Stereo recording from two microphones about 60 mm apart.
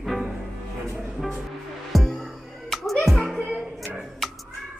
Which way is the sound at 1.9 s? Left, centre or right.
Centre.